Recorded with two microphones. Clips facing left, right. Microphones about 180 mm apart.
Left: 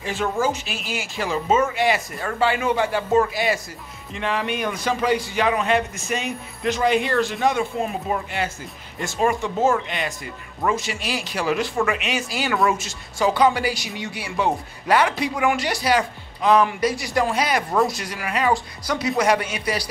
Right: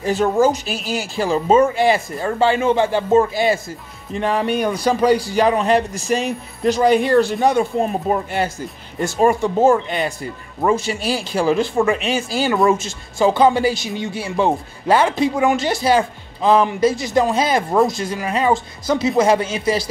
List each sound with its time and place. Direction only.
0.0 s speech: 40° right (ahead or behind)
4.1 s speech: 40° right (ahead or behind)